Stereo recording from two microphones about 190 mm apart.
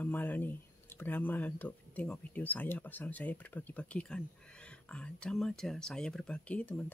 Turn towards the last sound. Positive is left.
turn(degrees=5)  # may be behind; listen again after turning